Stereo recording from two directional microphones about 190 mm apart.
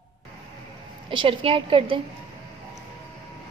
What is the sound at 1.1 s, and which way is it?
Speech, 25° right (ahead or behind).